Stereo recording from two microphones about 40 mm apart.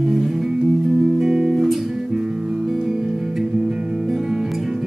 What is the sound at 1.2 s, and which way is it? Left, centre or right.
Music, centre.